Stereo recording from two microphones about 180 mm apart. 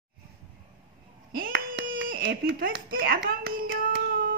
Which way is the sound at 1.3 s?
55° right (ahead or behind).